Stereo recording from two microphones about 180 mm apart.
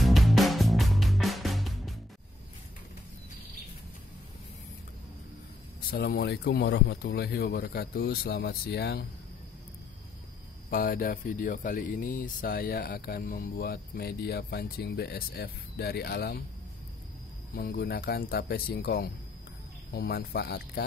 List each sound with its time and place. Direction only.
0.0 s music: centre (ahead or behind)
5.9 s speech: 60° left (ahead or behind)
10.7 s speech: 55° left (ahead or behind)
17.6 s speech: 55° left (ahead or behind)